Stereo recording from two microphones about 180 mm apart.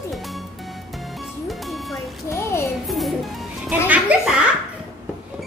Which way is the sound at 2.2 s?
15° left (ahead or behind).